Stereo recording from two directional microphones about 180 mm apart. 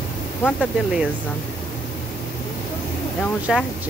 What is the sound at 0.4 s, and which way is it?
Speech, 5° left (ahead or behind).